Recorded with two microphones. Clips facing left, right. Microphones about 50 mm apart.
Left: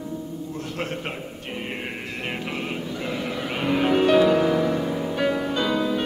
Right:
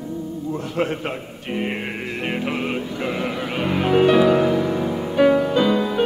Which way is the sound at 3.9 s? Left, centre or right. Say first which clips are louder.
Right 4 dB; centre.